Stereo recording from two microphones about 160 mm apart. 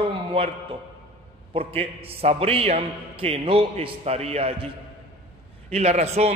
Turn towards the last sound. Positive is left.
turn(degrees=-45)  # may be behind; listen again after turning